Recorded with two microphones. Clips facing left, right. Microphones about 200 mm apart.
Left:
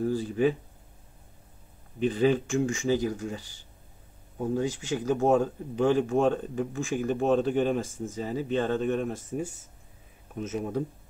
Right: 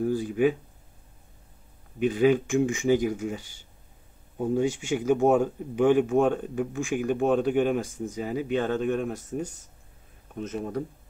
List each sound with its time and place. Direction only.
0.0 s speech: 10° right (ahead or behind)
2.0 s speech: 10° right (ahead or behind)
4.4 s speech: 20° right (ahead or behind); by 10.8 s 5° left (ahead or behind)